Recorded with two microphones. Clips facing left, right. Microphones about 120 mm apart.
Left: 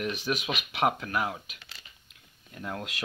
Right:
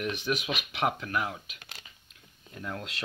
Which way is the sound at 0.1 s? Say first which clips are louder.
Even; 40° left (ahead or behind).